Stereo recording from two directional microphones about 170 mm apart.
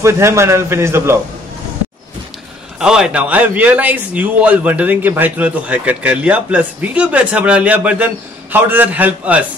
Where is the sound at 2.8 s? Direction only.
5° right (ahead or behind).